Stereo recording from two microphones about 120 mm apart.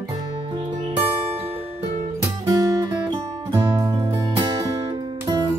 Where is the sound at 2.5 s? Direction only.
35° right (ahead or behind).